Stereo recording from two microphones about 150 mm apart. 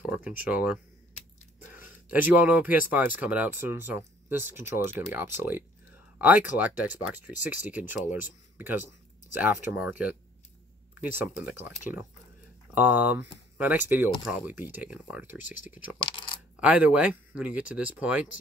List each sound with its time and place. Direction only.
0.1 s speech: 10° right (ahead or behind)
12.7 s speech: 10° right (ahead or behind)
16.0 s coin: 35° left (ahead or behind)
16.5 s speech: 10° right (ahead or behind)